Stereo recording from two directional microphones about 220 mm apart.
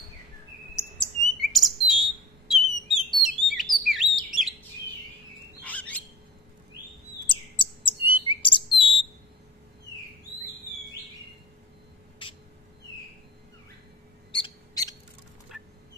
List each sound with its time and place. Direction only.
0.9 s bird: centre (ahead or behind)
3.7 s chirp: centre (ahead or behind)
5.6 s bird: 5° left (ahead or behind)
7.2 s chirp: 25° left (ahead or behind)
8.3 s bird: 20° left (ahead or behind)
12.2 s vehicle: 20° left (ahead or behind)
14.3 s owl: 20° left (ahead or behind)
15.5 s a sound: centre (ahead or behind)